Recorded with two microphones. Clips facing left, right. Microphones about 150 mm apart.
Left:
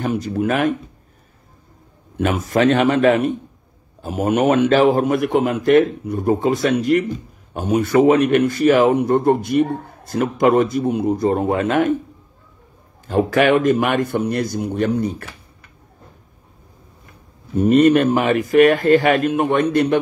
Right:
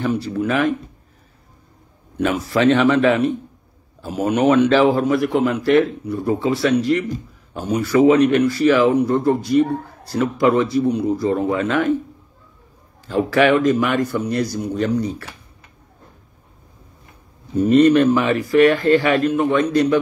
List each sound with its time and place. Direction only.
0.0 s a man's voice: 45° left (ahead or behind)
2.1 s a man's voice: 45° left (ahead or behind)
13.0 s a man's voice: 45° left (ahead or behind)
17.6 s a man's voice: 50° left (ahead or behind)